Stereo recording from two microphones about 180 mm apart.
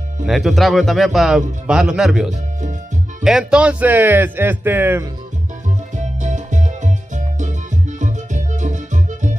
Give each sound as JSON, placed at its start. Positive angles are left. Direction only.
{"t": 0.3, "sound": "speech", "side_deg": 0}
{"t": 5.9, "sound": "music", "side_deg": -40}